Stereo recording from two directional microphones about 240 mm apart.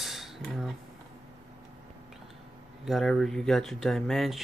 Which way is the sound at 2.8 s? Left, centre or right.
Centre.